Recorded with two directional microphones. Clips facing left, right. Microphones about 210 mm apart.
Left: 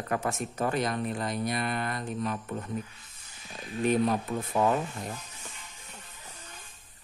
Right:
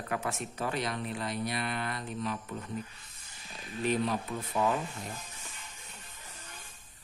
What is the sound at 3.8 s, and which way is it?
Speech, 45° left (ahead or behind).